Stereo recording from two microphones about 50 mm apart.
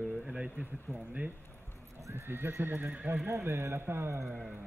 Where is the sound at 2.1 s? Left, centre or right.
Right.